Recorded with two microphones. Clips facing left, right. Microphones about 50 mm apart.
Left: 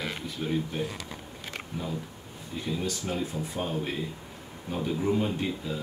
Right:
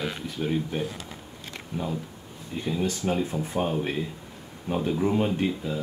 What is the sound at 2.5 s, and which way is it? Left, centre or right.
Speech, right.